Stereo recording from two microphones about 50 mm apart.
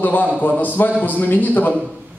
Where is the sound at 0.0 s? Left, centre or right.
Left.